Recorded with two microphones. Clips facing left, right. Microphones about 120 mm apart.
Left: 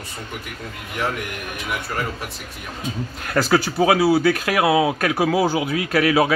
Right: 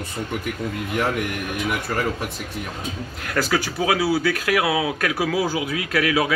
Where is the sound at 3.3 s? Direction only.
30° left (ahead or behind).